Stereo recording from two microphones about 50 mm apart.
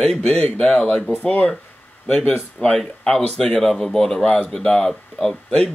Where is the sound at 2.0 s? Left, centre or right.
Centre.